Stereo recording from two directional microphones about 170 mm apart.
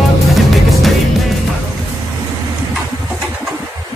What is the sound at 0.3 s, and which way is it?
Music, centre (ahead or behind).